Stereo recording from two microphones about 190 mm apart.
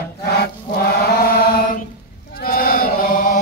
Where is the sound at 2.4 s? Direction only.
50° left (ahead or behind).